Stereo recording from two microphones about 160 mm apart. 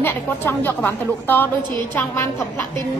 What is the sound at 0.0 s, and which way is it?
A woman's voice, 15° left (ahead or behind).